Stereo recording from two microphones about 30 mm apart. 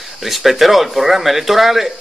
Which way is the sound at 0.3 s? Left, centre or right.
Centre.